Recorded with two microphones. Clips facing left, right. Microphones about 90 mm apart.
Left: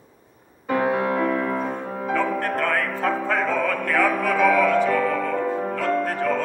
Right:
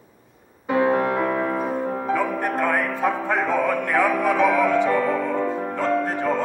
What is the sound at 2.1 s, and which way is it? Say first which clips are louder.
Music: left 2 dB; 15° right (ahead or behind).